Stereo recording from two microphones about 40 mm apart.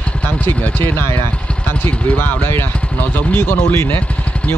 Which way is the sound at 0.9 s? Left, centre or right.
Left.